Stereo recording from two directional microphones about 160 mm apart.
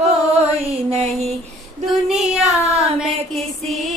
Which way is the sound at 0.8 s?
40° right (ahead or behind).